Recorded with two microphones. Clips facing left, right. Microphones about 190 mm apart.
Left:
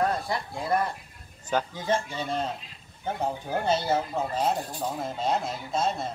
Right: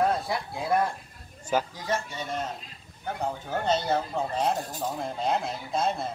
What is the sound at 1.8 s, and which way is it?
Speech, 30° left (ahead or behind).